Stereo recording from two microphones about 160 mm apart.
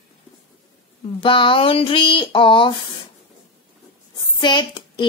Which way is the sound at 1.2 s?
30° left (ahead or behind).